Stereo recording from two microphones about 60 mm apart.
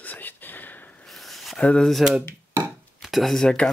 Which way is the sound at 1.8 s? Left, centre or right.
Centre.